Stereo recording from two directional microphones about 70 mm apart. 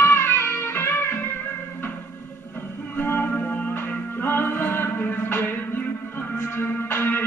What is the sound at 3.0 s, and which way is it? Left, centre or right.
Music, left.